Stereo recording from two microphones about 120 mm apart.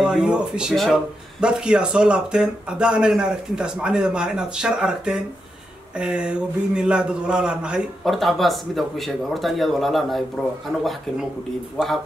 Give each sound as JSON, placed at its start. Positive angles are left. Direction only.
{"t": 0.0, "sound": "speech", "side_deg": -5}